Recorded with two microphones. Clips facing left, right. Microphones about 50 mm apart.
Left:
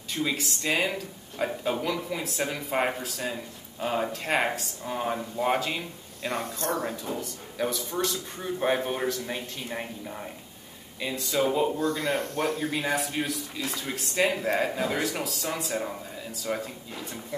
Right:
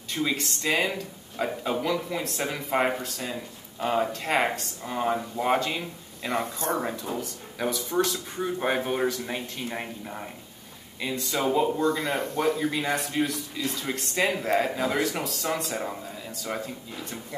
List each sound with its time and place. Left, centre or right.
0.1 s a man's voice: centre
6.8 s a man's voice: centre
7.2 s a man's voice: centre
11.0 s speech: centre
11.9 s speech: centre
12.7 s speech: centre